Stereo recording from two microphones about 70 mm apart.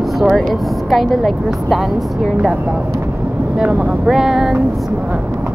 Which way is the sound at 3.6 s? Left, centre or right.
Centre.